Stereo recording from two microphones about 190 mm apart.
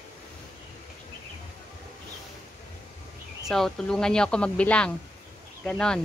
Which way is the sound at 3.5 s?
Centre (ahead or behind).